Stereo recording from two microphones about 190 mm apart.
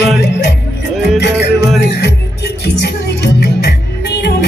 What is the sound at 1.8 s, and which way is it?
Music, 60° left (ahead or behind).